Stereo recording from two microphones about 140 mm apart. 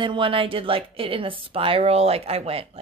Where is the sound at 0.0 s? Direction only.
35° right (ahead or behind).